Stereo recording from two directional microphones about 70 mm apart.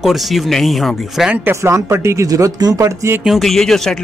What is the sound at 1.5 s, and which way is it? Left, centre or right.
Speech, right.